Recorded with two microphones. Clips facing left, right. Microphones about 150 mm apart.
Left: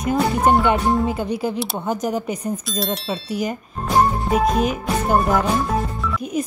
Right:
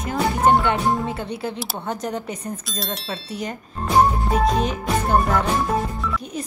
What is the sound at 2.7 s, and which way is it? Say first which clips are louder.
A woman's voice: left 5 dB; centre (ahead or behind).